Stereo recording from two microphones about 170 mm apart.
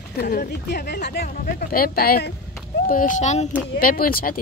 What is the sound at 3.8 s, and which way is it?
Speech, 55° left (ahead or behind).